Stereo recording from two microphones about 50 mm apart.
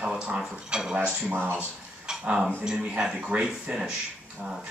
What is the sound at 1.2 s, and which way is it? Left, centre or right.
Speech, right.